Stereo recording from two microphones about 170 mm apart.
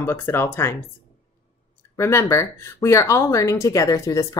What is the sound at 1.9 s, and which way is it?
Speech, 15° left (ahead or behind).